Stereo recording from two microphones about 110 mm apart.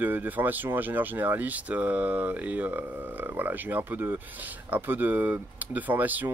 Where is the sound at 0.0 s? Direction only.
15° right (ahead or behind).